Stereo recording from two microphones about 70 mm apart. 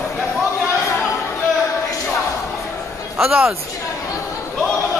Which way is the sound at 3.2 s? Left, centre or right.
Centre.